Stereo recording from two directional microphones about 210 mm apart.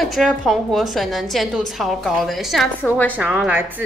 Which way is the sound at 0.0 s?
Centre (ahead or behind).